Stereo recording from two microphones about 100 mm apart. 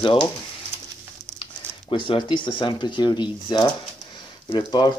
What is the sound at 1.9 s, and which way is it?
Speech, 55° left (ahead or behind).